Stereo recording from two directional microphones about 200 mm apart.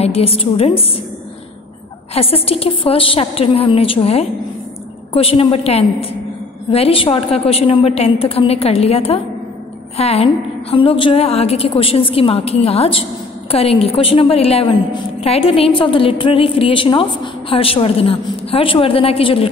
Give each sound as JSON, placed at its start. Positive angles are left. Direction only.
{"t": 0.0, "sound": "a woman's voice", "side_deg": 30}
{"t": 2.1, "sound": "a woman's voice", "side_deg": 30}